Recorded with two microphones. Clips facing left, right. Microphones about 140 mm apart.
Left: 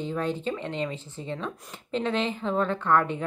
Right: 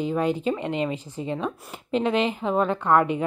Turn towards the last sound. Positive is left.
turn(degrees=-10)  # may be behind; listen again after turning